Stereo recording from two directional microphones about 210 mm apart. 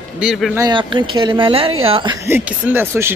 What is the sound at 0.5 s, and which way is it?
Speech, 20° right (ahead or behind).